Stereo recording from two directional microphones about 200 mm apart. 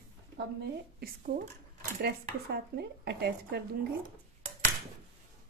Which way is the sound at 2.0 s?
55° right (ahead or behind).